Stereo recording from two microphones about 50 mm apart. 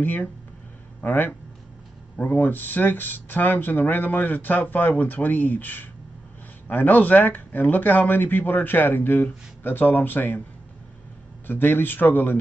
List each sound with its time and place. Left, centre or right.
0.0 s speech: left
11.4 s speech: left